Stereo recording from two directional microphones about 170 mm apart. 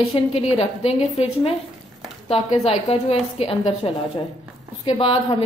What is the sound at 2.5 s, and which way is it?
A woman's voice, 35° left (ahead or behind).